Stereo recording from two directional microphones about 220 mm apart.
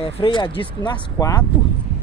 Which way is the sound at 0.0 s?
20° left (ahead or behind).